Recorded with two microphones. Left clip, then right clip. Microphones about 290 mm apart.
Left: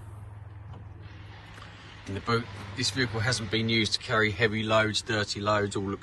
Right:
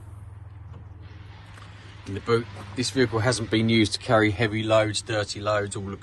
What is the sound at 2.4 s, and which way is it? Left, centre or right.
Speech, left.